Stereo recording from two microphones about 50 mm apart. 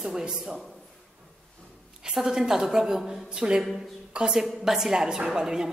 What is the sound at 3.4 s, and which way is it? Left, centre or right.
A woman's voice, centre.